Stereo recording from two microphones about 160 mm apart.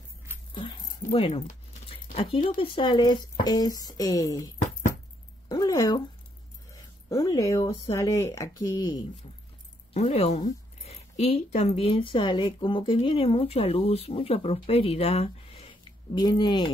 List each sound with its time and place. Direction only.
0.6 s keys jangling: 35° left (ahead or behind)
2.5 s speech: 35° left (ahead or behind)
5.5 s a sound: 25° left (ahead or behind)
7.1 s speech: 20° left (ahead or behind)
9.9 s speech: 40° left (ahead or behind)